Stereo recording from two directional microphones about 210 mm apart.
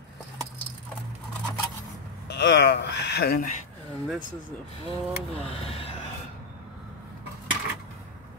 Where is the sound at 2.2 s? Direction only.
55° left (ahead or behind).